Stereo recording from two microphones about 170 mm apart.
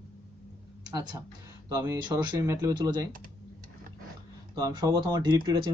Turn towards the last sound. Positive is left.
turn(degrees=-25)  # may be behind; listen again after turning